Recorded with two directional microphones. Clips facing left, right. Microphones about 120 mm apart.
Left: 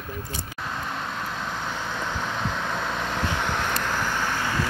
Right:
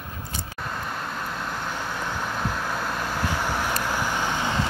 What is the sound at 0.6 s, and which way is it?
Vehicle, centre (ahead or behind).